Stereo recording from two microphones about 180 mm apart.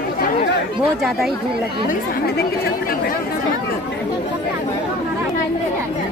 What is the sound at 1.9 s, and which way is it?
Speech, 55° left (ahead or behind).